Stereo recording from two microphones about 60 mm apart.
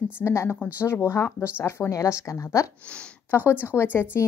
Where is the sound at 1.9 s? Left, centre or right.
Left.